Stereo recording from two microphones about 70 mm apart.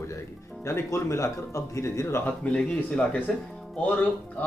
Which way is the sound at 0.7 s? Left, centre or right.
Left.